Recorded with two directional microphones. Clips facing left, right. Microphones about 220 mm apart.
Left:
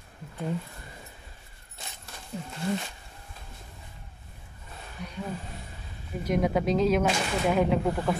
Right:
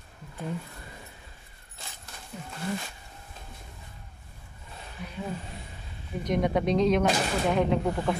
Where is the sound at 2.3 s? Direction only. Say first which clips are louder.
Left 4 dB; 30° left (ahead or behind).